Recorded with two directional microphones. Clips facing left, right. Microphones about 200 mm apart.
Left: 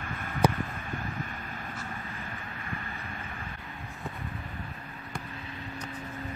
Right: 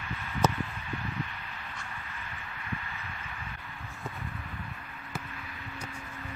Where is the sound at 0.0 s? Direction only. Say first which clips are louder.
Left 2 dB; 50° left (ahead or behind).